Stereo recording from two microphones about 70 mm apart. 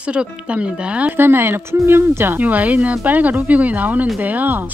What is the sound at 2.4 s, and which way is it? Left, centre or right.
Speech, right.